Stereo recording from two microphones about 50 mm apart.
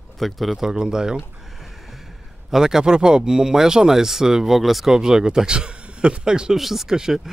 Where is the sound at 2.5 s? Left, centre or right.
Centre.